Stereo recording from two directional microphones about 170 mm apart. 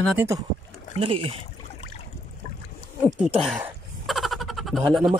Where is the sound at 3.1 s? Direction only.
5° right (ahead or behind).